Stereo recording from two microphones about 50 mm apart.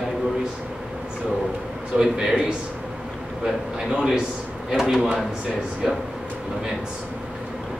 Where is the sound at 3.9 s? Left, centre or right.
Centre.